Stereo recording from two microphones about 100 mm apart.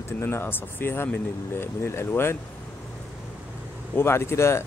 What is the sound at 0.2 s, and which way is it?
Speech, 25° left (ahead or behind).